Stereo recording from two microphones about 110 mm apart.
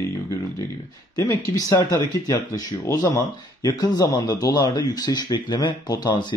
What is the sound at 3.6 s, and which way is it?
A man's voice, 40° left (ahead or behind).